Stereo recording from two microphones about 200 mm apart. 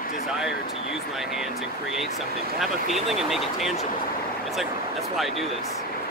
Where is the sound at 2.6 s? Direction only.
Centre (ahead or behind).